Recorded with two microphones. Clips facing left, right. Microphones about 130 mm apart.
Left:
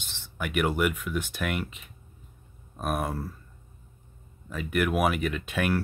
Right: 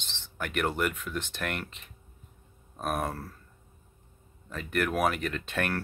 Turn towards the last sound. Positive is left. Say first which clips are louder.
# left 4 dB
turn(degrees=5)  # may be behind; listen again after turning